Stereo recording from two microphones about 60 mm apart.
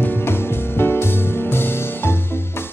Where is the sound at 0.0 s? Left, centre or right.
Left.